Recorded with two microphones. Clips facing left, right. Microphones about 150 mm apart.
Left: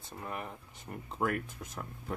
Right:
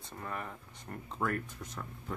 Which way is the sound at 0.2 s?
15° left (ahead or behind).